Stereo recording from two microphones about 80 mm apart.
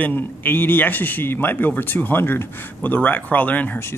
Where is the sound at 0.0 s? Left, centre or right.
Left.